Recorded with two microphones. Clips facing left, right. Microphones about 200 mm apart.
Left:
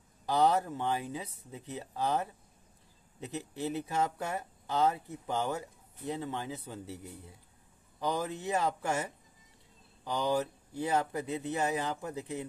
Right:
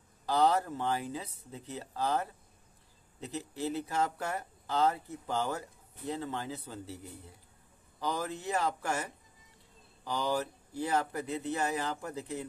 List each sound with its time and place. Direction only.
0.3 s speech: 20° left (ahead or behind)